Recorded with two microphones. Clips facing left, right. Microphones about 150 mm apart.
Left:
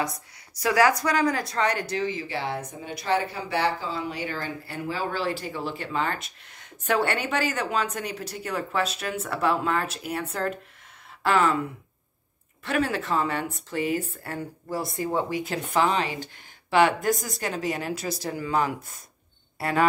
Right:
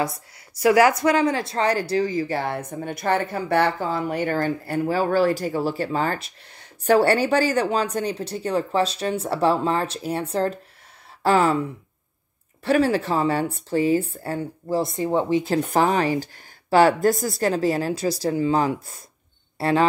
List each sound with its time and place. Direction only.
0.6 s speech: 25° right (ahead or behind)
12.6 s speech: 35° right (ahead or behind)
15.5 s speech: 45° right (ahead or behind); by 19.9 s 25° right (ahead or behind)